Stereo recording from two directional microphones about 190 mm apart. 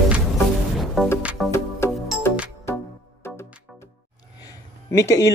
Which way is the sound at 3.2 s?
15° left (ahead or behind).